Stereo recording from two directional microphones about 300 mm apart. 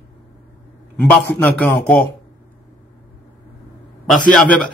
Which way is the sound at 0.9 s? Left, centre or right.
Centre.